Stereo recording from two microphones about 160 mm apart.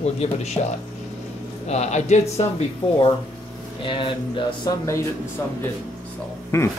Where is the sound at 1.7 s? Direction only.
45° left (ahead or behind).